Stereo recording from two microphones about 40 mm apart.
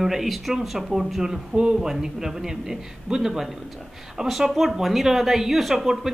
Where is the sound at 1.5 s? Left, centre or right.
Right.